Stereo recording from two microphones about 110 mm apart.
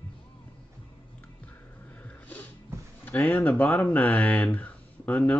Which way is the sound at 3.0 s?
15° left (ahead or behind).